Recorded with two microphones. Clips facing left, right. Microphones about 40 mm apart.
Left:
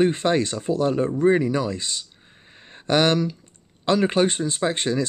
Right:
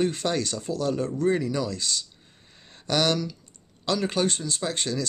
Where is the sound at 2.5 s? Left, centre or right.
Left.